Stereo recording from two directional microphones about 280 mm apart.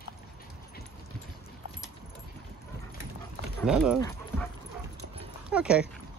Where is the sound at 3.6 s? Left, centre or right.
Centre.